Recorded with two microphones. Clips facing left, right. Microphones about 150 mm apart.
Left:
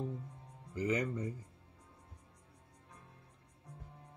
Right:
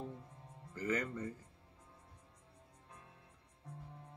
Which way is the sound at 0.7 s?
15° left (ahead or behind).